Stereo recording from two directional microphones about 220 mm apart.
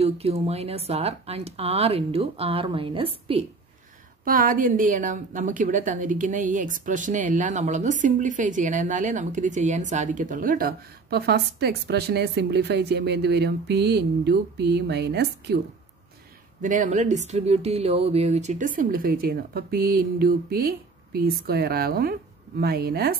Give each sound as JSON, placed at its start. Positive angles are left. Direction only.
{"t": 0.0, "sound": "speech", "side_deg": -25}
{"t": 4.2, "sound": "a woman's voice", "side_deg": -40}
{"t": 16.6, "sound": "a woman's voice", "side_deg": -35}